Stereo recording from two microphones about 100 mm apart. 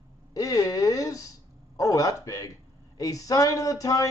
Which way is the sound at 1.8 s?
35° left (ahead or behind).